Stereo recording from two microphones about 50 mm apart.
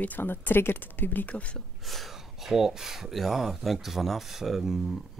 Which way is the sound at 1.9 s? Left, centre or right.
Centre.